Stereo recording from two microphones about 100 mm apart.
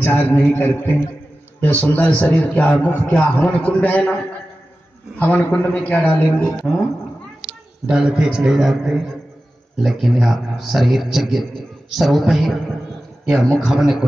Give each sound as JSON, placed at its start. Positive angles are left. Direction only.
{"t": 0.0, "sound": "a man's voice", "side_deg": 20}
{"t": 5.2, "sound": "a man's voice", "side_deg": 15}
{"t": 7.9, "sound": "a man's voice", "side_deg": -5}